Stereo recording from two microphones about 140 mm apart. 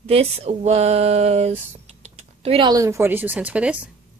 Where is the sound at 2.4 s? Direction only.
40° right (ahead or behind).